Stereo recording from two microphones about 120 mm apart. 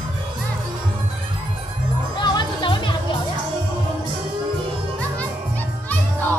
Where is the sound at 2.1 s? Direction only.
40° left (ahead or behind).